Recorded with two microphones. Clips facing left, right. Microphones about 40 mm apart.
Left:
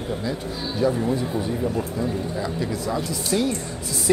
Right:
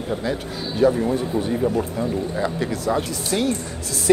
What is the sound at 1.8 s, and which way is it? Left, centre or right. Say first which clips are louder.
Speech: right 2 dB; right.